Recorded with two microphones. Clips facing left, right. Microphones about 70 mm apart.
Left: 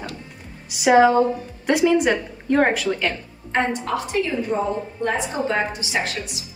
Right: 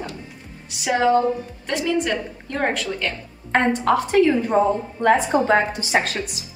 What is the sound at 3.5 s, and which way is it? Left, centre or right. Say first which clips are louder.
A woman's voice: right 4 dB; right.